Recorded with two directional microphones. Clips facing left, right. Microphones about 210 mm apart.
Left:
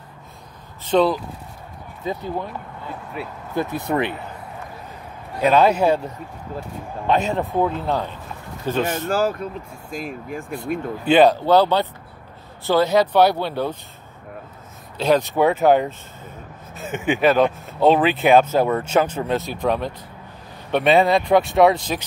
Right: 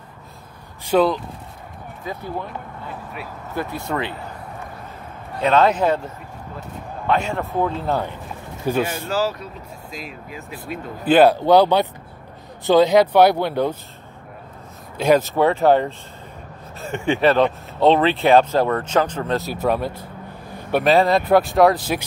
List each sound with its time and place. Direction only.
0.8 s speech: 5° right (ahead or behind)
2.0 s speech: 15° left (ahead or behind)
5.4 s speech: 10° left (ahead or behind)
7.8 s speech: 10° right (ahead or behind)
9.0 s speech: 50° left (ahead or behind)
11.1 s speech: 5° right (ahead or behind)
15.0 s speech: 10° right (ahead or behind)
15.3 s speech: 5° left (ahead or behind)